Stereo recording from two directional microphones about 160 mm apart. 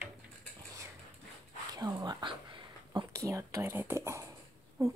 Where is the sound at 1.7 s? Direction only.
25° right (ahead or behind).